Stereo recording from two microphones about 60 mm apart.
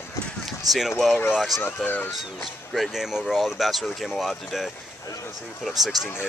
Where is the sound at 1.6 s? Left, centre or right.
Left.